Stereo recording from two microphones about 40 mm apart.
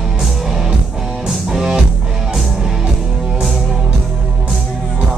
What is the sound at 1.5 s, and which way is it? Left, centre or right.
Music, centre.